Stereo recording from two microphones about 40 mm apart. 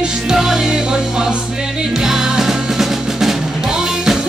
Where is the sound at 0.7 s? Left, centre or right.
Centre.